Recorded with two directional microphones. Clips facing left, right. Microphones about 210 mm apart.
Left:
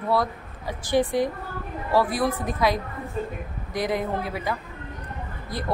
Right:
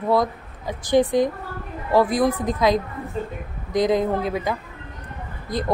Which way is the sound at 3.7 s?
20° right (ahead or behind).